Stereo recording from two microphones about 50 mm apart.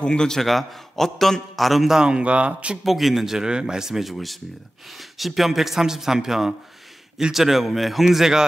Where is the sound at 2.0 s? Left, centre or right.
Right.